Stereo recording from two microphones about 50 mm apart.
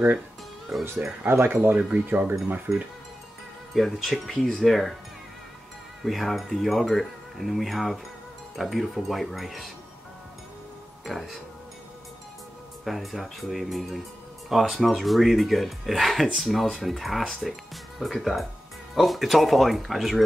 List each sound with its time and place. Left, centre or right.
1.2 s speech: right
1.8 s speech: right
2.7 s speech: centre
6.0 s speech: centre
11.1 s speech: centre
12.8 s speech: centre